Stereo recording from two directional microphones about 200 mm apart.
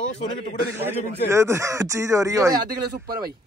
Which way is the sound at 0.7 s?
10° right (ahead or behind).